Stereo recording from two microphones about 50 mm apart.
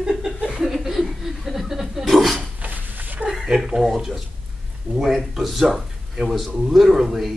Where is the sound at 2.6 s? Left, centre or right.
Right.